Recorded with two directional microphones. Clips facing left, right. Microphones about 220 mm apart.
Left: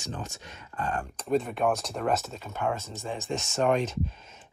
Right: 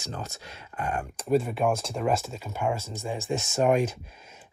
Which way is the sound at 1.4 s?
Centre (ahead or behind).